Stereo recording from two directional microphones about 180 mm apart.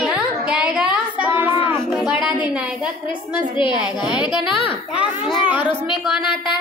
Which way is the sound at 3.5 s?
25° left (ahead or behind).